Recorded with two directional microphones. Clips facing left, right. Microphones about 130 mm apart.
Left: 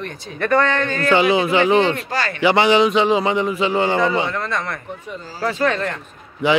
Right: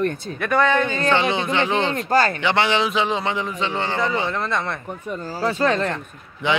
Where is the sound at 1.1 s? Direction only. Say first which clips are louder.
Left 7 dB; 5° left (ahead or behind).